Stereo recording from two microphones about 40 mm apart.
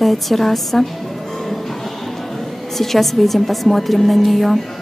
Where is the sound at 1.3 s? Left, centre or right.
Centre.